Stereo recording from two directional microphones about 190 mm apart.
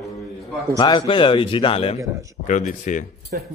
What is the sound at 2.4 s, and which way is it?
Speech, 40° left (ahead or behind).